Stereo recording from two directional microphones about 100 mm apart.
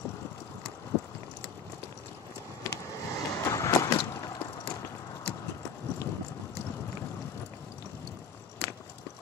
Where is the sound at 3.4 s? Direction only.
30° left (ahead or behind).